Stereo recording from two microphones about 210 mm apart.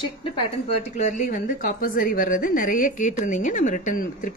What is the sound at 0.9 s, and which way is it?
A woman's voice, 35° left (ahead or behind).